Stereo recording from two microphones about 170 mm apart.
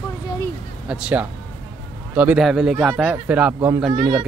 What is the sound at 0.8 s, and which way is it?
Speech, 5° right (ahead or behind).